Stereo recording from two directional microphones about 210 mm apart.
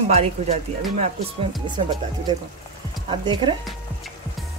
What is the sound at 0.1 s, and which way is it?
Speech, 30° right (ahead or behind).